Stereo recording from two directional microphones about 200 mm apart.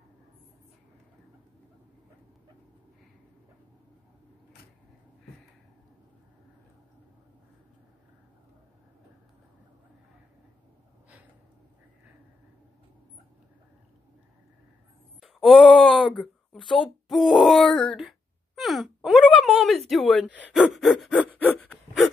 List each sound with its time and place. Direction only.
15.1 s a sound: centre (ahead or behind)
16.1 s speech: 25° left (ahead or behind)
17.1 s groan: centre (ahead or behind)
19.9 s speech: centre (ahead or behind)
21.4 s gasp: 5° left (ahead or behind)